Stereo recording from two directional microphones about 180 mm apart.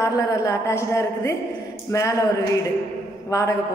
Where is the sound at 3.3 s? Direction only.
15° left (ahead or behind).